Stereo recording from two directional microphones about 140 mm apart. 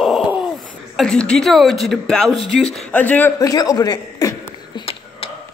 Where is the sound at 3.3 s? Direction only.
25° left (ahead or behind).